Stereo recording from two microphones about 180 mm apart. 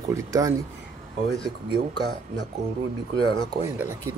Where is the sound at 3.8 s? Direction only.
15° right (ahead or behind).